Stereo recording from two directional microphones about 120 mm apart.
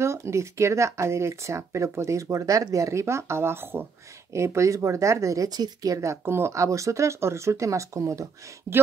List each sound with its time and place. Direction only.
0.0 s speech: 25° right (ahead or behind)